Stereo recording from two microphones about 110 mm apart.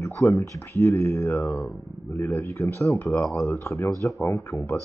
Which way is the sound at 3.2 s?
5° left (ahead or behind).